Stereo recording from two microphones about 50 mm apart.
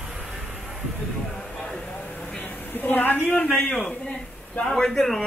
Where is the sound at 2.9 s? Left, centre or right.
Left.